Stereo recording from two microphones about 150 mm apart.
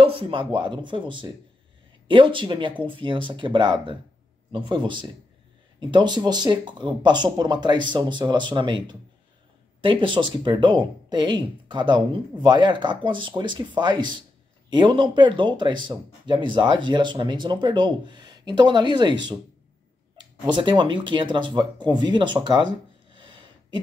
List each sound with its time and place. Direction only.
0.0 s speech: 35° right (ahead or behind)
20.5 s speech: 30° right (ahead or behind)
23.1 s a sound: 30° right (ahead or behind)